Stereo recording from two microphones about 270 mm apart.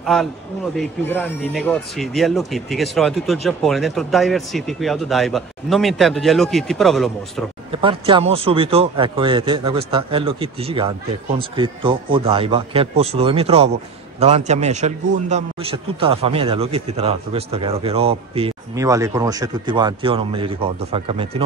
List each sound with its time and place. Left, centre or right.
0.0 s a man's voice: centre
7.7 s a man's voice: centre